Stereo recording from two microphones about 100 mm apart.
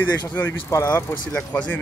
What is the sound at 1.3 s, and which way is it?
Speech, 15° left (ahead or behind).